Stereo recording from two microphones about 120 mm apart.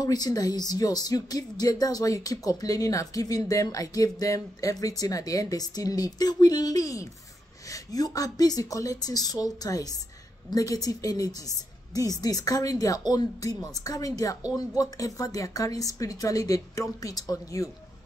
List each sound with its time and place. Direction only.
0.0 s speech: 30° left (ahead or behind)